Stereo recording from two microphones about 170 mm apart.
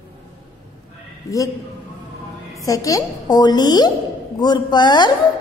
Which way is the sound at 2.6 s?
20° left (ahead or behind).